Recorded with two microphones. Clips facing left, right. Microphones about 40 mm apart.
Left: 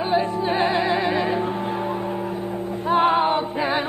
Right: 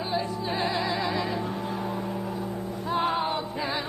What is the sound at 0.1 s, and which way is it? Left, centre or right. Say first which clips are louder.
Music: left 8 dB; left.